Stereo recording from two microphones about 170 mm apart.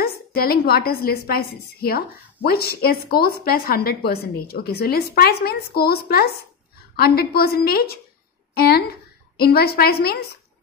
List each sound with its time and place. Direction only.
0.0 s a woman's voice: 65° left (ahead or behind)